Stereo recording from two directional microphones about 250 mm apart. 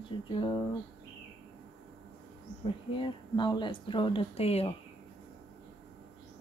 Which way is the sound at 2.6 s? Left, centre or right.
Centre.